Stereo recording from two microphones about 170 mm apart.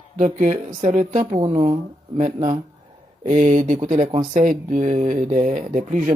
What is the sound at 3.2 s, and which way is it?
Speech, 45° right (ahead or behind).